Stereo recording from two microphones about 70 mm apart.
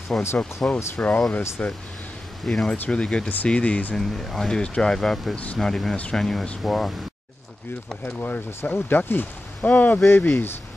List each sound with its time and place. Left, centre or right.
0.1 s speech: centre
2.4 s speech: centre
4.0 s speech: centre
5.3 s speech: centre
5.6 s speech: centre
8.0 s speech: left